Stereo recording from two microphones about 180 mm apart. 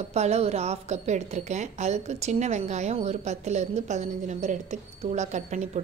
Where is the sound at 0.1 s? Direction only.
35° right (ahead or behind).